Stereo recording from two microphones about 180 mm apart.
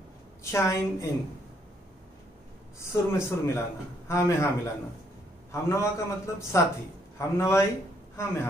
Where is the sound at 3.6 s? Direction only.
15° left (ahead or behind).